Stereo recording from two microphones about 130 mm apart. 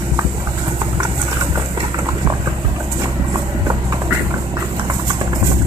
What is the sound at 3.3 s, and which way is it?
Clip-clop, 30° right (ahead or behind).